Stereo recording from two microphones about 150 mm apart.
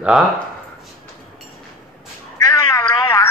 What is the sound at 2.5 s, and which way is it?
Cat, 20° left (ahead or behind).